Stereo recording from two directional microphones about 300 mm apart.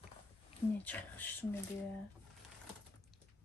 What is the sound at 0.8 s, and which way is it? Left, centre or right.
Speech, centre.